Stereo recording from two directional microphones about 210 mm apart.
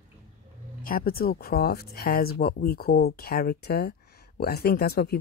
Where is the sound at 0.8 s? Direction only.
45° left (ahead or behind).